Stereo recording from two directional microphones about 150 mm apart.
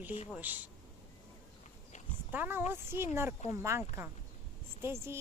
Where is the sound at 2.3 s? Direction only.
15° right (ahead or behind).